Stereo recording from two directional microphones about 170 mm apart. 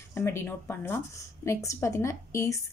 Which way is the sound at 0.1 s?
15° left (ahead or behind).